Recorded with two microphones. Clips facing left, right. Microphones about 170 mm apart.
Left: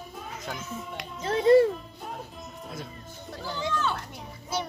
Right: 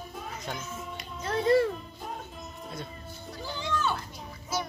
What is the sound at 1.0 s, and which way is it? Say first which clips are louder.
Music: left 3 dB; 90° left.